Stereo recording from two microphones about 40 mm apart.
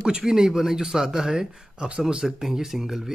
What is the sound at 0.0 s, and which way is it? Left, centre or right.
Speech, centre.